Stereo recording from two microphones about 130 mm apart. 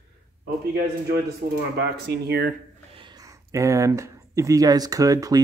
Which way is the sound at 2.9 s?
35° right (ahead or behind).